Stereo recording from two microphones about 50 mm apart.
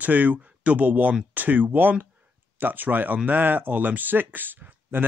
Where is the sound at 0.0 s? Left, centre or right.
Right.